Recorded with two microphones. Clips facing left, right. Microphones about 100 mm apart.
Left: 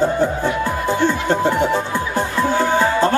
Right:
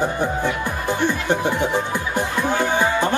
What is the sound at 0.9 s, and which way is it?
Music, 15° right (ahead or behind).